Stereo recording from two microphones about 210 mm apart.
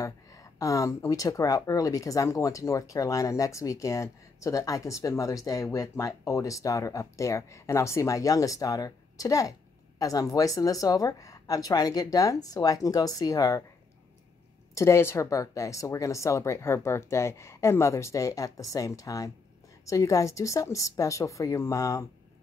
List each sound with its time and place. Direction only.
0.0 s speech: 15° left (ahead or behind)
14.7 s speech: 15° left (ahead or behind)